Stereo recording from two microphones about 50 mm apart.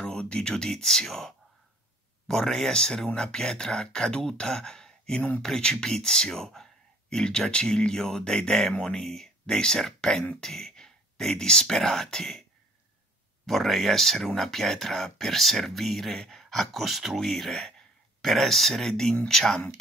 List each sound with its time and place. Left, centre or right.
0.1 s speech: centre
13.5 s speech: centre